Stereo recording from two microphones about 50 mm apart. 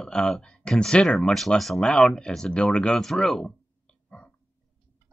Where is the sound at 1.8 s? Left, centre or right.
Centre.